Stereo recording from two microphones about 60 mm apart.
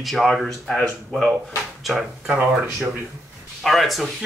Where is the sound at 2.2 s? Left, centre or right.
Right.